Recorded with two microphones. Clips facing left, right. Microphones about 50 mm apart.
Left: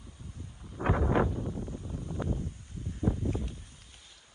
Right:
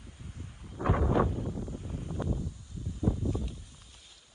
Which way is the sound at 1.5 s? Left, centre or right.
Left.